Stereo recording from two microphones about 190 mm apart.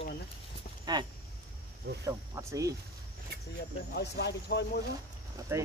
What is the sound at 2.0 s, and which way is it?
Speech, 15° right (ahead or behind).